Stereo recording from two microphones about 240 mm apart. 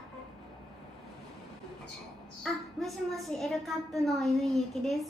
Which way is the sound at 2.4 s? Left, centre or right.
Centre.